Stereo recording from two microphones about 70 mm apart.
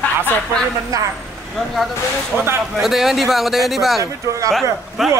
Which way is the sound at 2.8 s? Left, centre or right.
Centre.